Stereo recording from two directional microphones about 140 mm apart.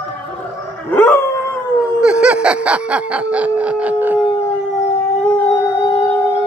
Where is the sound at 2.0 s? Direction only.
5° right (ahead or behind).